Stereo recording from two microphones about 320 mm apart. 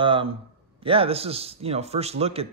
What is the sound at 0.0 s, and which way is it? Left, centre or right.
A man's voice, centre.